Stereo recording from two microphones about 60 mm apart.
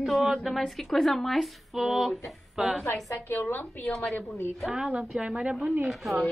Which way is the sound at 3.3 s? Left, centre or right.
Left.